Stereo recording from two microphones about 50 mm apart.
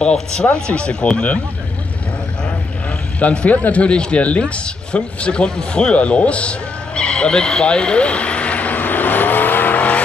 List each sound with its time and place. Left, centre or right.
0.0 s speech: centre
3.2 s speech: left
7.0 s vehicle: left